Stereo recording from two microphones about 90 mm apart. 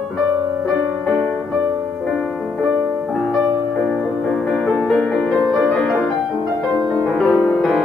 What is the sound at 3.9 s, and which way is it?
Music, 5° left (ahead or behind).